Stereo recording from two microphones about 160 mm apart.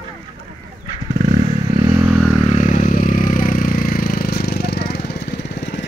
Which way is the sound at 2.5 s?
50° left (ahead or behind).